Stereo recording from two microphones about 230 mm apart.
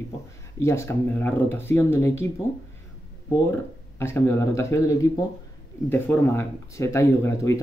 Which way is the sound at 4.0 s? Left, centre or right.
Centre.